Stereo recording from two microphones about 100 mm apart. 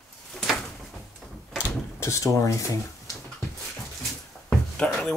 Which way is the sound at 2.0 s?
30° left (ahead or behind).